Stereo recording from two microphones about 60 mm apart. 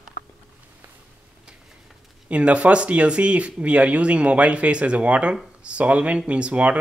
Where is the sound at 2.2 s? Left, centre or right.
Right.